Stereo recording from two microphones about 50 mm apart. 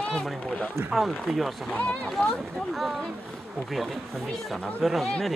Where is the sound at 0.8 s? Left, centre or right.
Right.